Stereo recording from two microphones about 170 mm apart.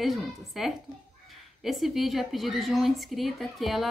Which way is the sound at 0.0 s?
Centre (ahead or behind).